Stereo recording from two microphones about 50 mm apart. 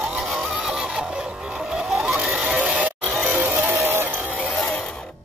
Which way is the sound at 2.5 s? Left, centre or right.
Right.